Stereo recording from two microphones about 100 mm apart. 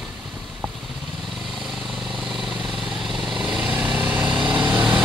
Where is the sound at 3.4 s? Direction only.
10° right (ahead or behind).